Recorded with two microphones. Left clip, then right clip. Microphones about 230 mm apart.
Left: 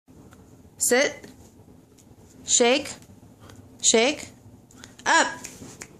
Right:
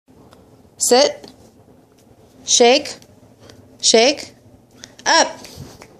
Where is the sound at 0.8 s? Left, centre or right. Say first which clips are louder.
Right 8 dB; centre.